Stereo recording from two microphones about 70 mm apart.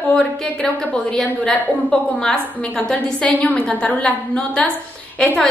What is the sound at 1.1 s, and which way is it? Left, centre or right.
A woman's voice, centre.